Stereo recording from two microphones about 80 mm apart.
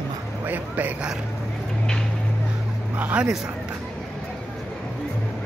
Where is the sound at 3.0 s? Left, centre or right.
Right.